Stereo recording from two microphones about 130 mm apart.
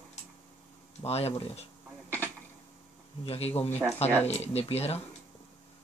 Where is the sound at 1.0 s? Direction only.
55° left (ahead or behind).